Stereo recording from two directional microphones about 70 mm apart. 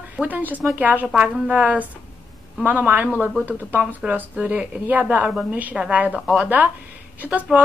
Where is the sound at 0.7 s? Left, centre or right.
Right.